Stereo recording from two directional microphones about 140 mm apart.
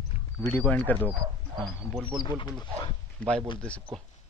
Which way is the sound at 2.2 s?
30° left (ahead or behind).